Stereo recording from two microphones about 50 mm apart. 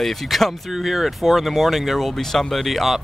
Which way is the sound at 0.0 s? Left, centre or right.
Centre.